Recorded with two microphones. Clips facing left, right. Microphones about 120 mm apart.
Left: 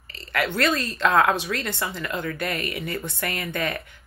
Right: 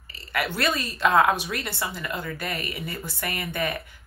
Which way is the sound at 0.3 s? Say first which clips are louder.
Left 3 dB; 15° right (ahead or behind).